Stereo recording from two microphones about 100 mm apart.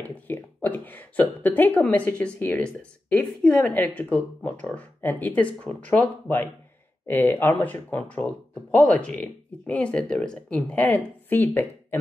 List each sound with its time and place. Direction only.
0.0 s a woman's voice: 15° left (ahead or behind)